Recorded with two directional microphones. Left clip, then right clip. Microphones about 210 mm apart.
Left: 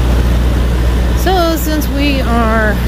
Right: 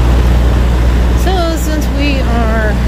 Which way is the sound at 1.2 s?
25° left (ahead or behind).